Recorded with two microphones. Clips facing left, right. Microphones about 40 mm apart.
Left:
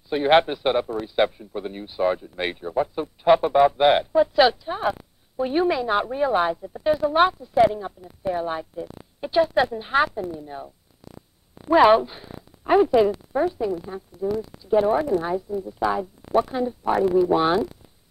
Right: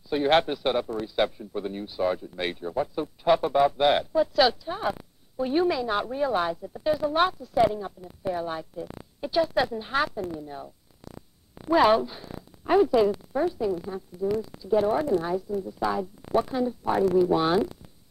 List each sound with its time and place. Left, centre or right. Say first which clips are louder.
0.1 s a man's voice: left 4 dB; centre
11.7 s a man's voice: left 5 dB; left